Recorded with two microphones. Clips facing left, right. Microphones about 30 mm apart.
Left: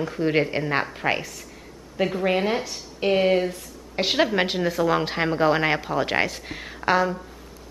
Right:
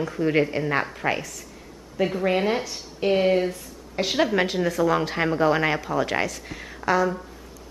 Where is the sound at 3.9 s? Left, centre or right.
Left.